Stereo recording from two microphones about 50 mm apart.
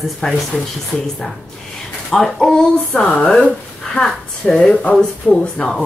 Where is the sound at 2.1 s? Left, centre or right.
Centre.